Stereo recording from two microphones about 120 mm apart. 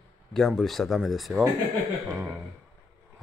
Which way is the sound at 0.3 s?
Centre (ahead or behind).